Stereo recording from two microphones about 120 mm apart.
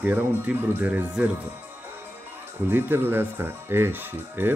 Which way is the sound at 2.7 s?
20° right (ahead or behind).